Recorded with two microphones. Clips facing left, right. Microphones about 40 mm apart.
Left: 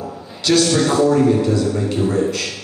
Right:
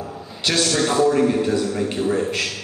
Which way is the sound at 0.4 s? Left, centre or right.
Right.